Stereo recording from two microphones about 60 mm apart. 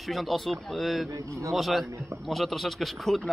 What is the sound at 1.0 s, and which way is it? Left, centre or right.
Speech, right.